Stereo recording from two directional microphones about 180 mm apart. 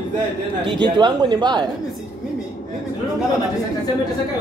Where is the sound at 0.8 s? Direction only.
25° right (ahead or behind).